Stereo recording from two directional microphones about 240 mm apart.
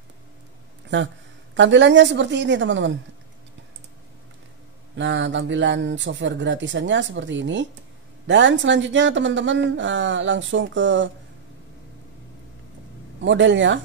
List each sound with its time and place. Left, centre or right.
0.8 s a woman's voice: right
4.9 s speech: right
13.2 s speech: right